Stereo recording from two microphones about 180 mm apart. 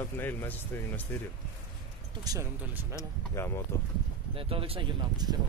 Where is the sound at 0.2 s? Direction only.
10° left (ahead or behind).